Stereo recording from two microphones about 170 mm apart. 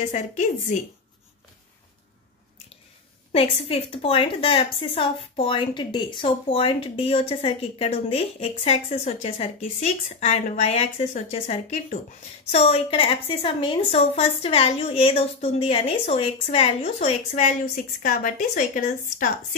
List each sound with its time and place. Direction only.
0.0 s a woman's voice: 45° left (ahead or behind)
3.3 s a woman's voice: 35° left (ahead or behind); by 19.2 s 55° left (ahead or behind)